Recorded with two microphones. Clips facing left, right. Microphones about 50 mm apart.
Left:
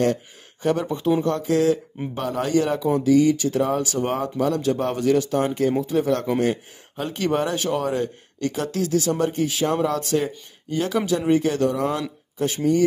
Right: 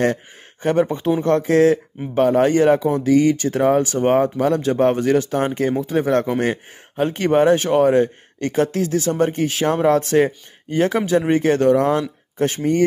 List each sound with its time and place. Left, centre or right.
0.0 s speech: right
9.8 s speech: right